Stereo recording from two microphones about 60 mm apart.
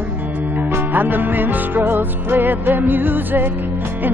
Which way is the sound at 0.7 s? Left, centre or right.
Right.